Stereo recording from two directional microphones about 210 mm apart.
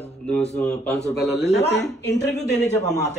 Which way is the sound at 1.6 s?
55° left (ahead or behind).